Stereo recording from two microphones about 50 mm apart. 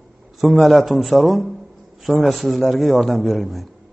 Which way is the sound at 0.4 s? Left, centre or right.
Centre.